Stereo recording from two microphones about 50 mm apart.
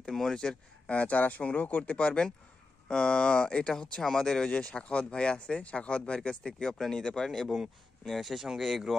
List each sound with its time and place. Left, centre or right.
0.0 s speech: centre
0.8 s speech: left; by 4.5 s centre
4.5 s speech: left; by 8.9 s centre